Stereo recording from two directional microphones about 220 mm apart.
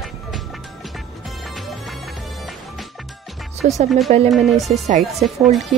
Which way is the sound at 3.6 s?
30° right (ahead or behind).